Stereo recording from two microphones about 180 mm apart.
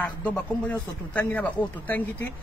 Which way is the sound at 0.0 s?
5° left (ahead or behind).